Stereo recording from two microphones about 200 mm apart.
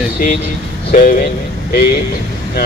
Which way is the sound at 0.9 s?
40° left (ahead or behind).